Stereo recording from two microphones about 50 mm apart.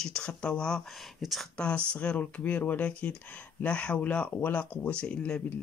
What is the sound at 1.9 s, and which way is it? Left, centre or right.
Speech, left.